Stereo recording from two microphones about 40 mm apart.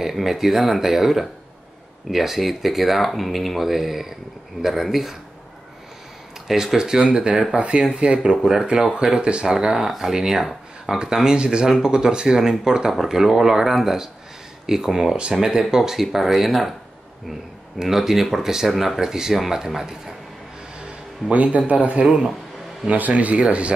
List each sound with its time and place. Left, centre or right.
0.0 s speech: centre
6.4 s speech: centre
12.9 s speech: centre
15.1 s speech: right; by 16.7 s centre
17.7 s speech: centre
21.3 s speech: right